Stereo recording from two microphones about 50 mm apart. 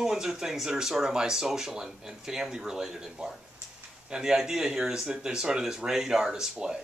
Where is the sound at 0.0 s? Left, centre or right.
Centre.